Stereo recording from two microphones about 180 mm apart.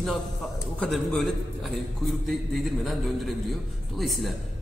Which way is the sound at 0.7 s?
Centre (ahead or behind).